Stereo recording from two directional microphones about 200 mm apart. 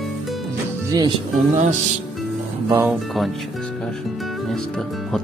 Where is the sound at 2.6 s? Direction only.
10° right (ahead or behind).